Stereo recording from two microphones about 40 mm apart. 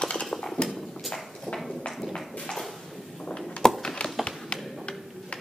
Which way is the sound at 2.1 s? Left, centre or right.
Centre.